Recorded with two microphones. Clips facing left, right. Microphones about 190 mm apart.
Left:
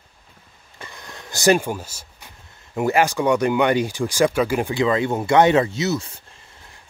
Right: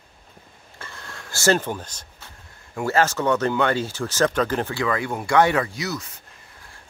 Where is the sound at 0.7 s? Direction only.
15° left (ahead or behind).